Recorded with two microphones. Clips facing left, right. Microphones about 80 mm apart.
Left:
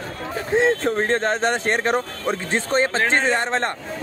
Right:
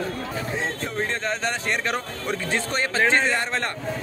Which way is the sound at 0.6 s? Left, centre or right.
Left.